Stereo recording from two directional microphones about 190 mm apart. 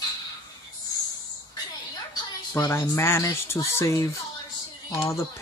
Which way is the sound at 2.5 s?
15° left (ahead or behind).